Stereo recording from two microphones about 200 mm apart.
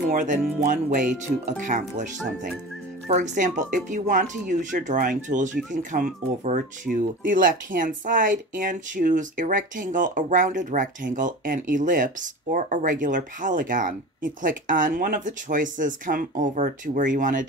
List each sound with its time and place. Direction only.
0.1 s speech: 40° right (ahead or behind)